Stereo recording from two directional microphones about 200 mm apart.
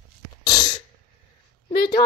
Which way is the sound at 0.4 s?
20° left (ahead or behind).